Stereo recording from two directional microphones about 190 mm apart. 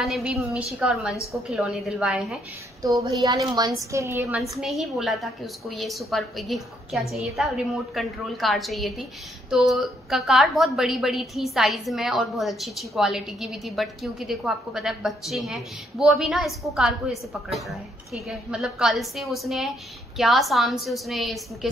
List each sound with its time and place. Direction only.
0.0 s a woman's voice: centre (ahead or behind)
3.1 s a woman's voice: 20° right (ahead or behind)
4.4 s a woman's voice: centre (ahead or behind)